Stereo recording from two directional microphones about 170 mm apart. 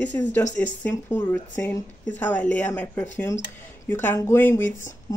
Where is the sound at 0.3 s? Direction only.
10° left (ahead or behind).